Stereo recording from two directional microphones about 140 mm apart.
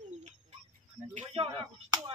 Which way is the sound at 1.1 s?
45° right (ahead or behind).